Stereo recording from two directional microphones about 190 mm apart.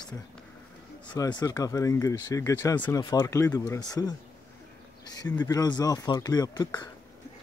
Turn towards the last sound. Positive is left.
turn(degrees=20)  # may be behind; listen again after turning